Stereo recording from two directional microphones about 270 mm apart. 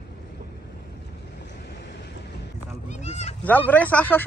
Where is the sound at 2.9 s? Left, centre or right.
Left.